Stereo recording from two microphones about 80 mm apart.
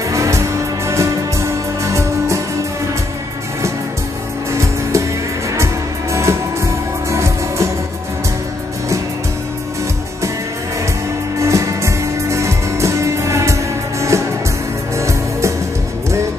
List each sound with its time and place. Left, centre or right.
0.1 s music: right
4.5 s music: right
6.1 s music: right
11.4 s music: right